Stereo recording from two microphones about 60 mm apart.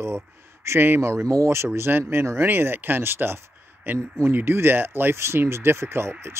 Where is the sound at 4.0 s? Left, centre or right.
Right.